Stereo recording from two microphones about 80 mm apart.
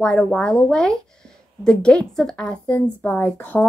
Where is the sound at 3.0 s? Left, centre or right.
Left.